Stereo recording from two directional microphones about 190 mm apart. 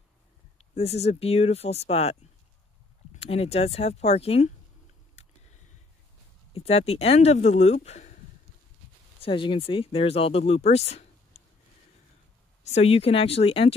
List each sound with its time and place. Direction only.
0.6 s speech: 35° left (ahead or behind)
3.2 s speech: 30° left (ahead or behind)
6.5 s speech: 35° left (ahead or behind)
9.2 s speech: 25° left (ahead or behind)
12.6 s speech: 35° left (ahead or behind)